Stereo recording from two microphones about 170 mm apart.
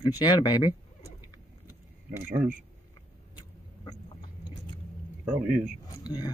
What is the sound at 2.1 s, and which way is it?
Speech, 10° right (ahead or behind).